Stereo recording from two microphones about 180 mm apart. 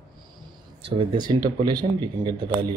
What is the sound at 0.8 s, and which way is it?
Speech, 25° right (ahead or behind).